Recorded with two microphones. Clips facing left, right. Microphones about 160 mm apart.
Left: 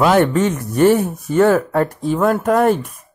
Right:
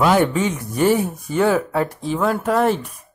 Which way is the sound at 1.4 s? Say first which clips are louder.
Left 4 dB; 5° right (ahead or behind).